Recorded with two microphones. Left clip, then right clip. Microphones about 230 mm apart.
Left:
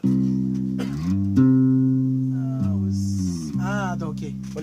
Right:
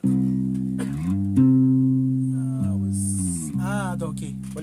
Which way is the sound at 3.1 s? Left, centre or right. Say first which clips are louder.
Left 1 dB; right.